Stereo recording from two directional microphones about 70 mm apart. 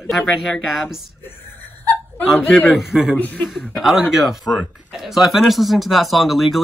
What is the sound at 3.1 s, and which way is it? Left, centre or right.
Speech, left.